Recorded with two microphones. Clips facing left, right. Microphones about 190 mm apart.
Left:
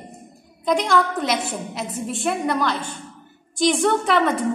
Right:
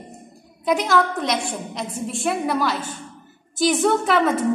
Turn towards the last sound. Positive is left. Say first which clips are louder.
# right 1 dB
turn(degrees=0)  # may be behind; listen again after turning